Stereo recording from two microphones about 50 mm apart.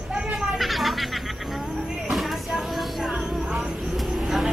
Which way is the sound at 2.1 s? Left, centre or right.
Centre.